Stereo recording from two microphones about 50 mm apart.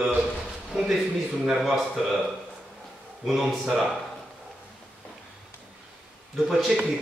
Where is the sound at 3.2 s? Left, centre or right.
Centre.